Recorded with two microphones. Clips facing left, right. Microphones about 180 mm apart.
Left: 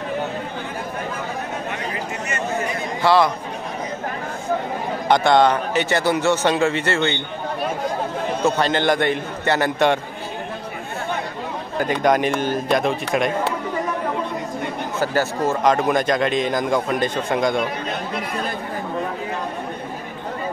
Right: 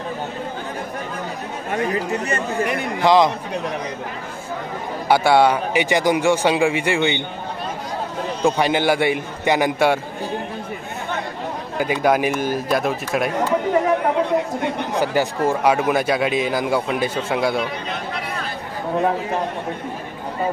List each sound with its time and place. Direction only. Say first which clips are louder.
3.0 s speech: right 2 dB; 15° right (ahead or behind)
5.0 s speech: right 1 dB; 5° right (ahead or behind)
8.5 s speech: right 2 dB; 10° right (ahead or behind)
11.8 s speech: even; 5° right (ahead or behind)
13.7 s chatter: right 6 dB; 75° right (ahead or behind)
15.0 s speech: right 1 dB; 15° right (ahead or behind)